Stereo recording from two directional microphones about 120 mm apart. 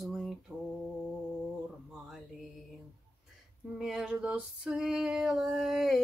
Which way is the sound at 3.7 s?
5° right (ahead or behind).